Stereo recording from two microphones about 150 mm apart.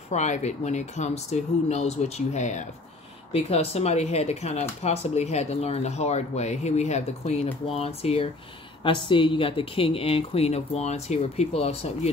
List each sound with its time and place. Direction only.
0.1 s a woman's voice: 50° left (ahead or behind)